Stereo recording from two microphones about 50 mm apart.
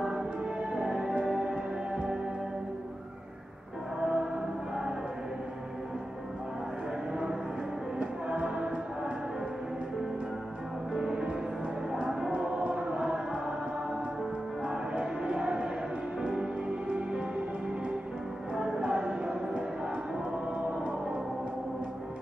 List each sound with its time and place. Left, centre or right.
0.0 s music: centre
4.0 s music: centre
8.0 s music: right
10.9 s music: centre
12.3 s choir: right
14.6 s a sound: centre
16.2 s music: centre
18.5 s music: centre